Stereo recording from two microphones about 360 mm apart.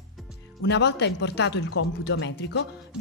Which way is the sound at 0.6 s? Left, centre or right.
Left.